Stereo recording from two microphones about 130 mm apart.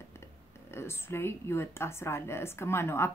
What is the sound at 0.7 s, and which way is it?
Speech, 20° left (ahead or behind).